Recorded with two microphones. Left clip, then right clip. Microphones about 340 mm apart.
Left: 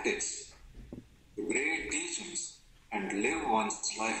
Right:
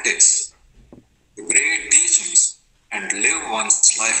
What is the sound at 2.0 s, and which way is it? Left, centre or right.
A man's voice, right.